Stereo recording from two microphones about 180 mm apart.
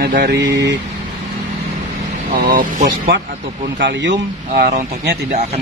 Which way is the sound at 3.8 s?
75° right (ahead or behind).